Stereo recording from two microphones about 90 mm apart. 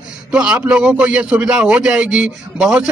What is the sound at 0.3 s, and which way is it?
A man's voice, 10° right (ahead or behind).